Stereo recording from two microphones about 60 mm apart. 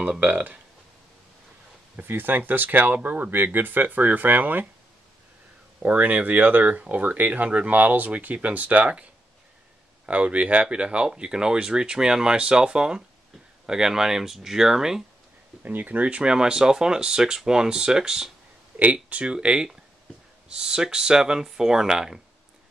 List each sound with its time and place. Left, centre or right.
0.2 s speech: right
2.0 s speech: right
5.8 s speech: right
10.0 s speech: right
15.6 s speech: right; by 18.3 s centre
18.8 s speech: right